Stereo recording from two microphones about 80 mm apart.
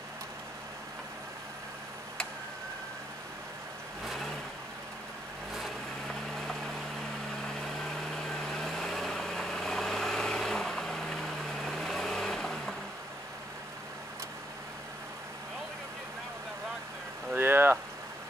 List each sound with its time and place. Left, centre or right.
4.0 s vehicle: centre
7.4 s vehicle: centre
17.4 s vehicle: right